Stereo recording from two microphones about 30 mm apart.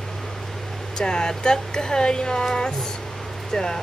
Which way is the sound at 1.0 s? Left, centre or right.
Left.